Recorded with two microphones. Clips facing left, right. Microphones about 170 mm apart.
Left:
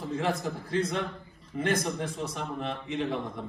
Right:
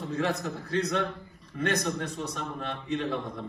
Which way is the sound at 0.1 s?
30° left (ahead or behind).